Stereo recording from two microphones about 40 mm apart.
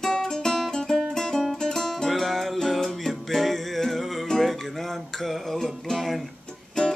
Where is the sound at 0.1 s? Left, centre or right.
Centre.